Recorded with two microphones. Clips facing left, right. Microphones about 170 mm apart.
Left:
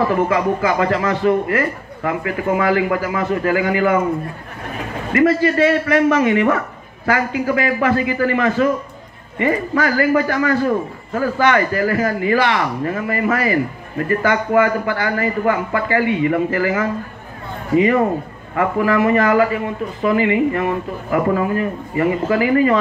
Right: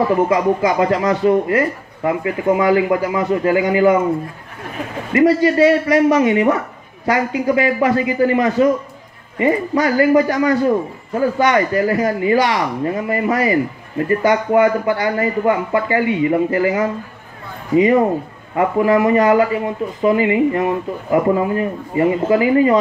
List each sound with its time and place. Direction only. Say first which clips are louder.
0.3 s a man's voice: right 2 dB; 15° right (ahead or behind)
5.1 s a man's voice: right 2 dB; 15° right (ahead or behind)